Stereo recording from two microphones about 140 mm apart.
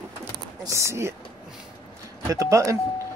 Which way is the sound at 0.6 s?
20° right (ahead or behind).